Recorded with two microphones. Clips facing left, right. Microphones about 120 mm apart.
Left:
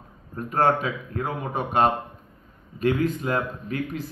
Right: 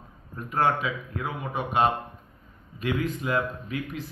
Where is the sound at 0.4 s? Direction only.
40° left (ahead or behind).